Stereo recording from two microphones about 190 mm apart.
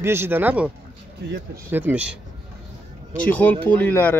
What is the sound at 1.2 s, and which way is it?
Speech, 55° right (ahead or behind).